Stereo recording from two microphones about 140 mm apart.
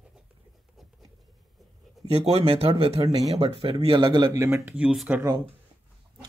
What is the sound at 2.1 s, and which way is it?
Speech, 45° right (ahead or behind).